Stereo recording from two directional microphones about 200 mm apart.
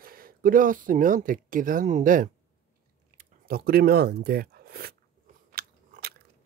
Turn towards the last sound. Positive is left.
turn(degrees=-50)  # may be behind; listen again after turning